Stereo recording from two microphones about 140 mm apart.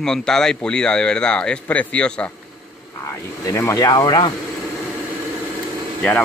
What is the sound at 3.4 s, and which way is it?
Speech, 25° left (ahead or behind).